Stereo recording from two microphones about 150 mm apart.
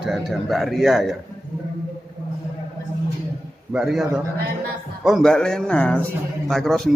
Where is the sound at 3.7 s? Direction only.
5° right (ahead or behind).